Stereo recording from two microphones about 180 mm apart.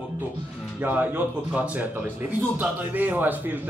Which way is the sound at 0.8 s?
10° right (ahead or behind).